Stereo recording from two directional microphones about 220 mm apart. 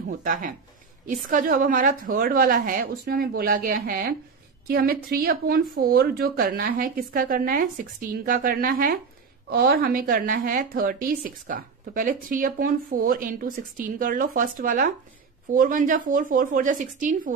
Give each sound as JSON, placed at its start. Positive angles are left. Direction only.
{"t": 0.2, "sound": "a woman's voice", "side_deg": -35}